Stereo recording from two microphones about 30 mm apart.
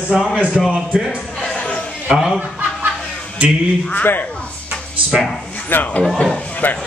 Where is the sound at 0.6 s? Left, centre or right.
Left.